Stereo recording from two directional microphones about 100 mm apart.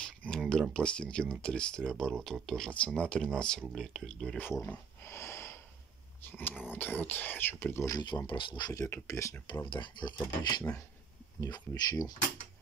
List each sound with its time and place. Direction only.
0.0 s a sound: 10° left (ahead or behind)
0.5 s speech: 10° left (ahead or behind)
4.4 s a sound: 20° left (ahead or behind)
6.7 s speech: 20° left (ahead or behind)
7.9 s speech: 50° left (ahead or behind)
8.7 s speech: 30° left (ahead or behind)
9.7 s speech: 50° left (ahead or behind)